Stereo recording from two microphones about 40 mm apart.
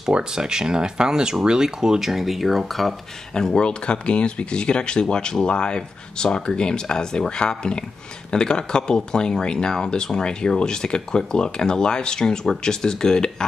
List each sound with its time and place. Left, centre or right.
0.1 s speech: centre
2.0 s speech: centre
3.3 s speech: left